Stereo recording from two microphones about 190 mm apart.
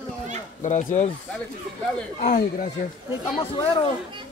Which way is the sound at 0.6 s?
40° left (ahead or behind).